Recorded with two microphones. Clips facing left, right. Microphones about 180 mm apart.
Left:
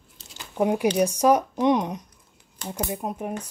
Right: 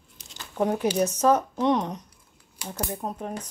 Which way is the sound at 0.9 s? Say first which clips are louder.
Left 1 dB; 10° left (ahead or behind).